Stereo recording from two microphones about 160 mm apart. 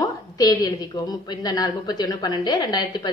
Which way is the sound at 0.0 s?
20° left (ahead or behind).